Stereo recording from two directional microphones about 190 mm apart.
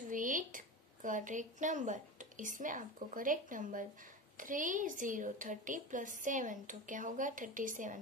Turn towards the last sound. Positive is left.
turn(degrees=-45)  # may be behind; listen again after turning